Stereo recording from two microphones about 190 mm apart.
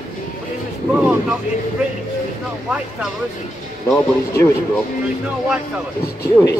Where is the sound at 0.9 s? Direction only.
5° right (ahead or behind).